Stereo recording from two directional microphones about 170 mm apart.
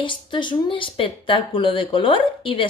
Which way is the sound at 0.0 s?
30° left (ahead or behind).